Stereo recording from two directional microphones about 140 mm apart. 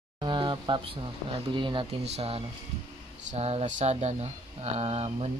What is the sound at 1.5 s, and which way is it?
Speech, 35° right (ahead or behind).